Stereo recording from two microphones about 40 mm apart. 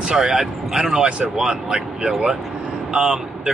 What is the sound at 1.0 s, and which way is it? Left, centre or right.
Speech, right.